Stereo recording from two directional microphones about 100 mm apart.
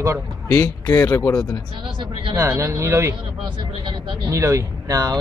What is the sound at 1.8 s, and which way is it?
Speech, 55° right (ahead or behind).